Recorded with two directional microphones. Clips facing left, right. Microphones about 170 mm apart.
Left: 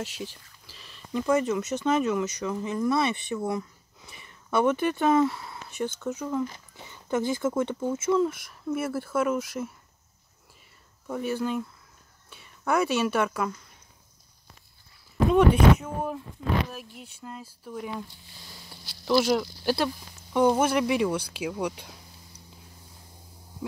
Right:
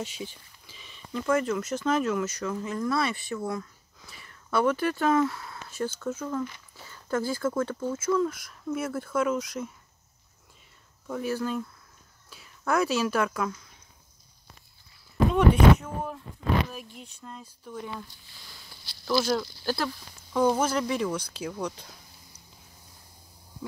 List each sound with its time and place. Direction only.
0.0 s speech: centre (ahead or behind)
1.1 s speech: 15° left (ahead or behind)
5.4 s a sound: 15° left (ahead or behind)
6.1 s speech: 15° left (ahead or behind)
8.7 s speech: 5° left (ahead or behind)
11.1 s speech: centre (ahead or behind)
15.3 s speech: 10° left (ahead or behind)
19.0 s speech: 15° left (ahead or behind)